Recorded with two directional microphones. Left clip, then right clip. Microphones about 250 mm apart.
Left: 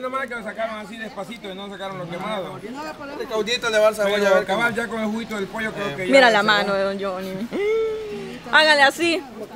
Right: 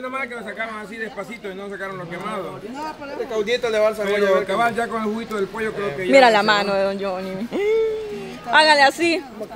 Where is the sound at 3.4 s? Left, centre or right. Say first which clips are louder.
Left 1 dB; left.